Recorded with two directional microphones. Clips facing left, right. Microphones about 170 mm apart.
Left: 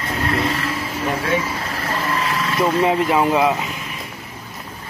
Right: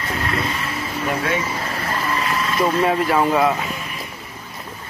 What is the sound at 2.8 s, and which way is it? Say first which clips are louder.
Speech: left 1 dB; 15° left (ahead or behind).